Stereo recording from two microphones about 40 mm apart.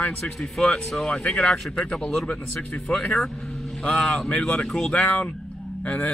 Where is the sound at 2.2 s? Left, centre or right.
Left.